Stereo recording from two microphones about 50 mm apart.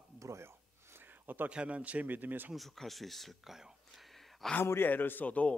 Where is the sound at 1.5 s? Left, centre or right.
Right.